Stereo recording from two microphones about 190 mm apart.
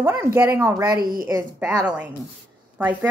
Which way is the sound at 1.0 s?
50° right (ahead or behind).